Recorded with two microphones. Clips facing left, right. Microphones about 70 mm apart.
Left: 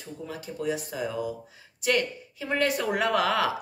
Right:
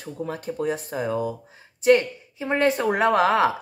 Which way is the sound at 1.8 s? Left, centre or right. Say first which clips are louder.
Right 8 dB; right.